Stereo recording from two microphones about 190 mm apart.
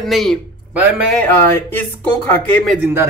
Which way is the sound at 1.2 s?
10° left (ahead or behind).